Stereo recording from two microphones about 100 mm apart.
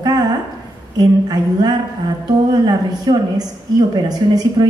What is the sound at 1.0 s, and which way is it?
A woman's voice, 45° right (ahead or behind).